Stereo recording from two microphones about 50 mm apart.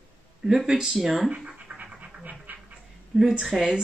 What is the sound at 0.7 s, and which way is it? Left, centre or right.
Speech, centre.